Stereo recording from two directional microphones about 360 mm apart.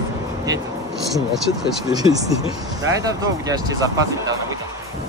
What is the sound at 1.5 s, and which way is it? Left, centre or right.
Speech, centre.